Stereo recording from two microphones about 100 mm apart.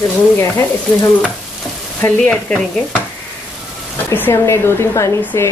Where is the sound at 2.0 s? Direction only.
15° left (ahead or behind).